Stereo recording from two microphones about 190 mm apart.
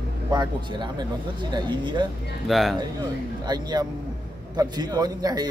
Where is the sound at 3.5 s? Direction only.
20° right (ahead or behind).